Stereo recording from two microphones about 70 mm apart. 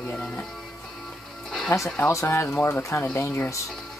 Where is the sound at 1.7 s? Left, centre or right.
Left.